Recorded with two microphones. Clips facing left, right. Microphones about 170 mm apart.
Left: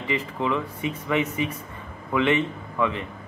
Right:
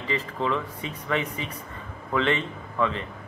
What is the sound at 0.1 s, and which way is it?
A man's voice, 15° left (ahead or behind).